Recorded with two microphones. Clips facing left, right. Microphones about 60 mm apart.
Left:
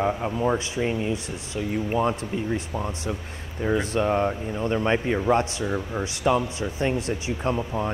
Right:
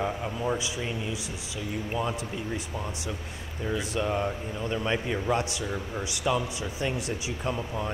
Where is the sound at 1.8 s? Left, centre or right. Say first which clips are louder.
Left 7 dB; left.